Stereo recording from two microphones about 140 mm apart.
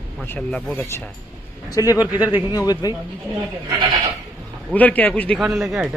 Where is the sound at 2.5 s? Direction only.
25° left (ahead or behind).